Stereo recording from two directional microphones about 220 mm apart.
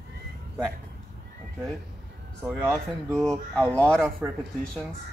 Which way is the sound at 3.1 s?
5° left (ahead or behind).